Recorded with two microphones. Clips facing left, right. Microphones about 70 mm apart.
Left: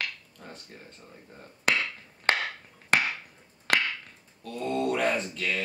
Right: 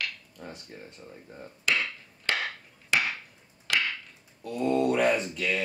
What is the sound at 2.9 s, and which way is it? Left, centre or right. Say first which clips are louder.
Chop: left 2 dB; left.